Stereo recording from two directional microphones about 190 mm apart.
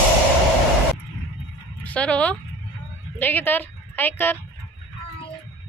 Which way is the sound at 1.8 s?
5° left (ahead or behind).